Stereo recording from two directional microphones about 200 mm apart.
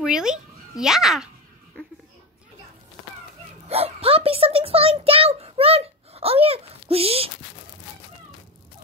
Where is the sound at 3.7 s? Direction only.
30° right (ahead or behind).